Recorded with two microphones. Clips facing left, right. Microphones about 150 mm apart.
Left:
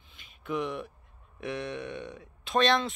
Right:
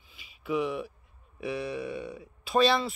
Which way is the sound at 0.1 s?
5° right (ahead or behind).